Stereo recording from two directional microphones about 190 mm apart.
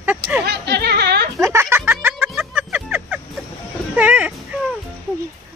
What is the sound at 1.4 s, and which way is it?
Music, 15° right (ahead or behind).